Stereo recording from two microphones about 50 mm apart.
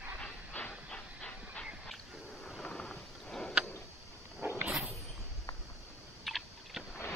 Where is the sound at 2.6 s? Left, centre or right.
Centre.